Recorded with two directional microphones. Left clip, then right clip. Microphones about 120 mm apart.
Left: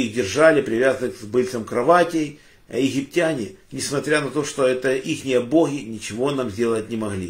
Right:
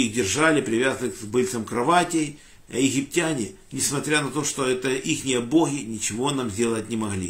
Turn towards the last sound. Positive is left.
turn(degrees=-15)  # may be behind; listen again after turning